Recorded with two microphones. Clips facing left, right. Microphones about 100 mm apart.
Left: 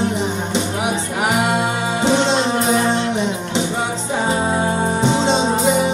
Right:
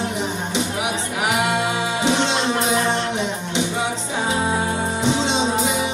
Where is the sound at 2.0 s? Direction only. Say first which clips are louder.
Left 5 dB; centre (ahead or behind).